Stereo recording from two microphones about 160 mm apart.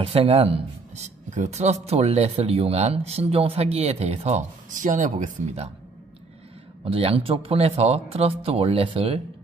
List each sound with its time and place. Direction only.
0.0 s speech: 35° right (ahead or behind)
6.8 s speech: 35° right (ahead or behind)